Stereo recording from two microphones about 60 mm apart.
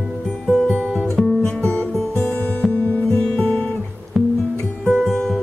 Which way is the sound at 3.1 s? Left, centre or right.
Centre.